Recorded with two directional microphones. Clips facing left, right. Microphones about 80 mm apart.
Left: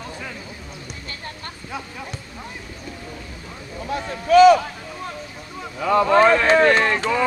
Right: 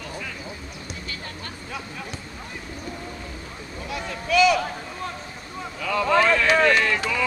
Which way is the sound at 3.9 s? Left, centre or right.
Left.